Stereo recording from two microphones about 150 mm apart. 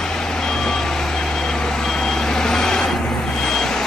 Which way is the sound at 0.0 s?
5° left (ahead or behind).